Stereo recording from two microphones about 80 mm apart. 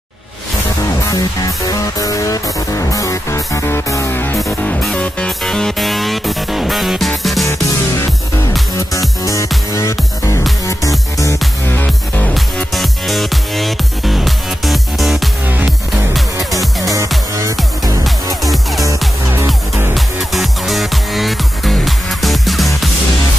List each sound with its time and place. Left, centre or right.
1.7 s music: left
5.4 s music: centre
9.2 s music: left
11.7 s music: left
12.7 s music: centre
16.5 s music: right
17.6 s music: centre
19.9 s music: centre